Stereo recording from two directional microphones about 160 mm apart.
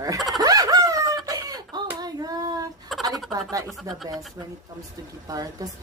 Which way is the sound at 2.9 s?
Centre (ahead or behind).